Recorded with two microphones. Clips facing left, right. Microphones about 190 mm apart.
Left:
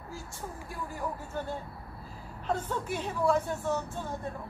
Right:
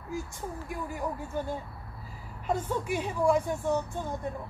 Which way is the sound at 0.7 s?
15° right (ahead or behind).